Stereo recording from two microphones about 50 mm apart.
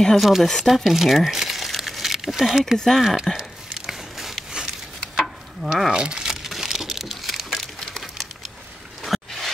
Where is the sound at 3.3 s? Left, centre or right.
Centre.